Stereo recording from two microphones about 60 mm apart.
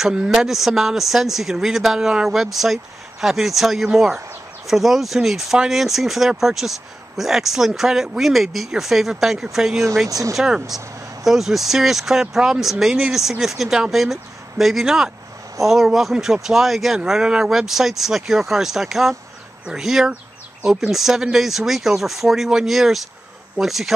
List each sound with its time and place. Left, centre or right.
0.0 s speech: centre
10.0 s speech: right
10.3 s speech: centre